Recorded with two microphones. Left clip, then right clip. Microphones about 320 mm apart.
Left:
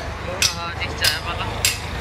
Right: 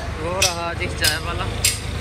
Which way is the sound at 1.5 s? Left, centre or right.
Centre.